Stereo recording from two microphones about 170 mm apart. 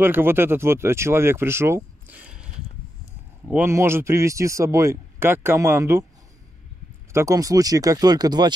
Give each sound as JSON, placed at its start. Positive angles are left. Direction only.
{"t": 0.0, "sound": "speech", "side_deg": -15}
{"t": 7.1, "sound": "speech", "side_deg": -15}